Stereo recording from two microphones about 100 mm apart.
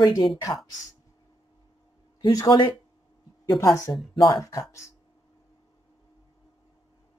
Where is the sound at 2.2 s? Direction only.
45° left (ahead or behind).